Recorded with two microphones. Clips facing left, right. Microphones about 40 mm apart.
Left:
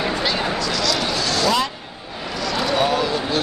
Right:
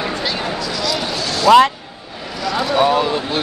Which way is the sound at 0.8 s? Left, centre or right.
Centre.